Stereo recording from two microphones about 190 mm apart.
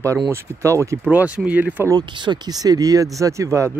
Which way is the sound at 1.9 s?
25° right (ahead or behind).